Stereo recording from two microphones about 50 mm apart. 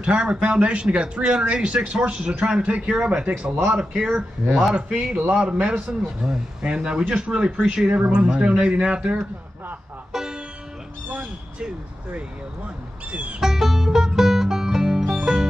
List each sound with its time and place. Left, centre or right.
0.0 s speech: centre
3.6 s speech: centre
13.1 s speech: right
13.4 s music: centre